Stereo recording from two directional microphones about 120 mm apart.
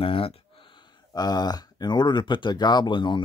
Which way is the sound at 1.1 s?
35° left (ahead or behind).